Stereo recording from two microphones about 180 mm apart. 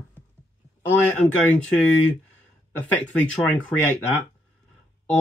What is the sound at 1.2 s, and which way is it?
Speech, 10° left (ahead or behind).